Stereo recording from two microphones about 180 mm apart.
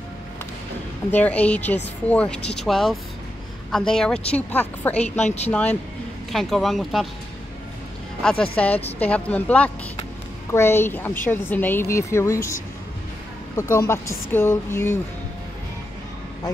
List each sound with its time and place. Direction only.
1.1 s a woman's voice: 10° left (ahead or behind)
5.2 s speech: 40° left (ahead or behind)
6.3 s speech: centre (ahead or behind)
8.2 s a woman's voice: 5° left (ahead or behind)
13.6 s a woman's voice: 15° left (ahead or behind)